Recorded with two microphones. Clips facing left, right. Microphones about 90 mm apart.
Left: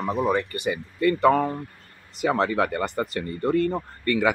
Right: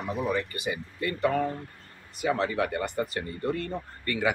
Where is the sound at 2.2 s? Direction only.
75° left (ahead or behind).